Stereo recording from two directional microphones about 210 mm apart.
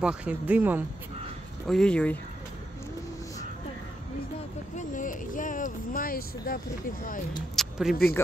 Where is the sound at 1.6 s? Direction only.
5° left (ahead or behind).